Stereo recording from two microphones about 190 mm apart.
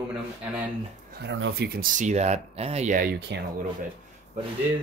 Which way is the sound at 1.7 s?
45° right (ahead or behind).